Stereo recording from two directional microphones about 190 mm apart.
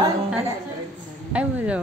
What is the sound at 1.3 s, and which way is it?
Speech, 5° right (ahead or behind).